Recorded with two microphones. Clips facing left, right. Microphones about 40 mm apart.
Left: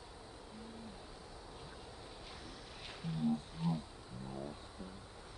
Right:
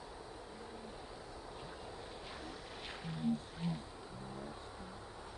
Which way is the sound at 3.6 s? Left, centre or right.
Right.